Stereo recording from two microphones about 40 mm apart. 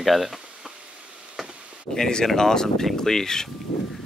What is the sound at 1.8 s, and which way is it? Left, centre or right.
Speech, centre.